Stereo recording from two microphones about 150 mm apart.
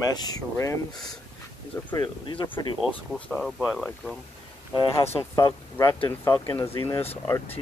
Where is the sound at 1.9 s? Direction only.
30° left (ahead or behind).